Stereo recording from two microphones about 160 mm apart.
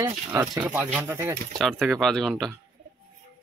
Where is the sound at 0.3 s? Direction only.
10° right (ahead or behind).